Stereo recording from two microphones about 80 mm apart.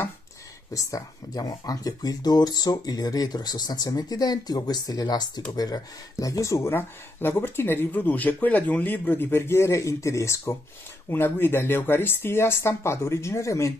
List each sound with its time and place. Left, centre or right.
0.7 s speech: left